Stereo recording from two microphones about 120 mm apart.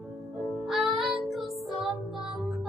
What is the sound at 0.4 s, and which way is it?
Music, centre (ahead or behind).